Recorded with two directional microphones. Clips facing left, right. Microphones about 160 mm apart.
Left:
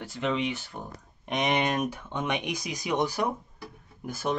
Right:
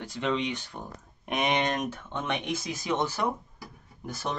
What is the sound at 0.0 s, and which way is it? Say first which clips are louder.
Speech: even; 5° left (ahead or behind).